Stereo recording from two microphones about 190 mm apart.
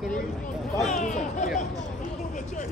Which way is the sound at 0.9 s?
40° left (ahead or behind).